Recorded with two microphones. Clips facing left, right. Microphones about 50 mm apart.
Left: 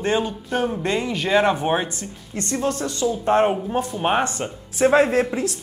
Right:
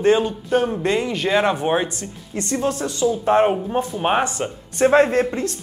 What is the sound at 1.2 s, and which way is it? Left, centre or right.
Speech, centre.